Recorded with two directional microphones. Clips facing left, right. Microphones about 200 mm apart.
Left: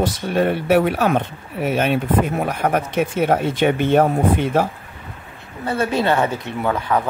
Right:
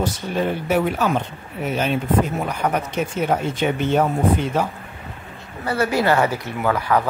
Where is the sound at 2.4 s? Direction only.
55° left (ahead or behind).